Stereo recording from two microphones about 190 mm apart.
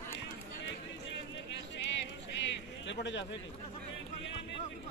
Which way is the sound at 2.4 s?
70° left (ahead or behind).